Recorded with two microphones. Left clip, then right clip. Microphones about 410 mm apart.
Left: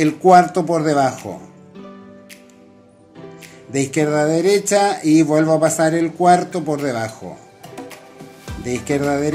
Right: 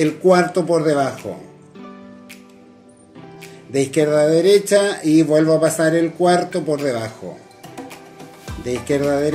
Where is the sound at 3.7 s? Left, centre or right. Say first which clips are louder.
Right 2 dB; centre.